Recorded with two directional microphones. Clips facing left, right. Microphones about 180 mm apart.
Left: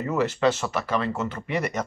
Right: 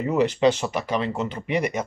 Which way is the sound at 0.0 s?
15° right (ahead or behind).